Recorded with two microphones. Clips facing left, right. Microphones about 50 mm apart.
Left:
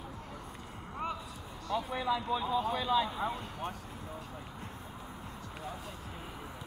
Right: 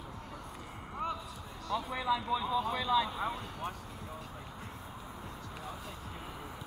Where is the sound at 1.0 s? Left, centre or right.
Centre.